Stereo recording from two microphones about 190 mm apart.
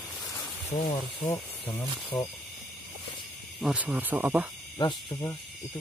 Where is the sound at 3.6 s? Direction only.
5° right (ahead or behind).